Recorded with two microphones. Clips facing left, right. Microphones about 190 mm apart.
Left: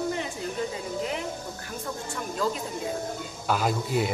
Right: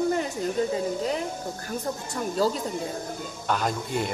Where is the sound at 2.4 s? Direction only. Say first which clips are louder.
Right 4 dB; 35° right (ahead or behind).